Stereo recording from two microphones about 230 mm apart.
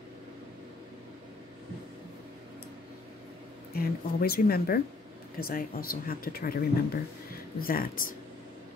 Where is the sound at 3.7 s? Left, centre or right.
Left.